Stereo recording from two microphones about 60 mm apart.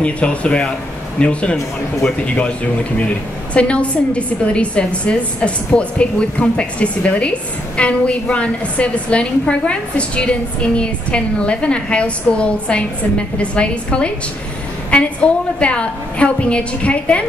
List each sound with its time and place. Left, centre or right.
0.0 s a woman's voice: left